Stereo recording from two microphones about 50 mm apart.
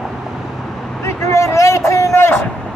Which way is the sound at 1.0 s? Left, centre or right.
Left.